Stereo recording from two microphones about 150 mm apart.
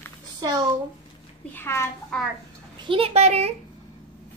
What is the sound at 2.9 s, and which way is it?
Speech, 40° right (ahead or behind).